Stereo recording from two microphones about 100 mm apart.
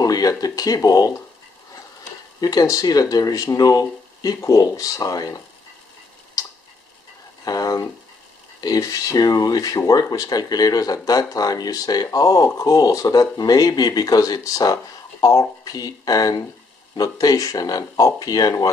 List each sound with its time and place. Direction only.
0.0 s speech: 40° left (ahead or behind)
2.4 s speech: 35° left (ahead or behind)
6.4 s tick: 40° left (ahead or behind)
7.4 s a sound: 40° left (ahead or behind)
8.5 s speech: 40° left (ahead or behind)